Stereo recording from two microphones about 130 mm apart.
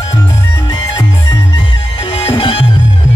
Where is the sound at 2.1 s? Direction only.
40° left (ahead or behind).